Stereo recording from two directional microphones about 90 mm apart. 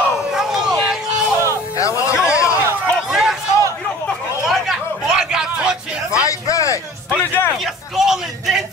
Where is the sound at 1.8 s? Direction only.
35° left (ahead or behind).